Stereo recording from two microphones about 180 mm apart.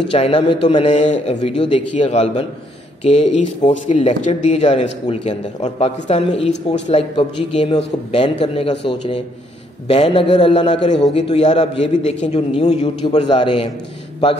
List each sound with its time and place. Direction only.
0.1 s a man's voice: 35° left (ahead or behind)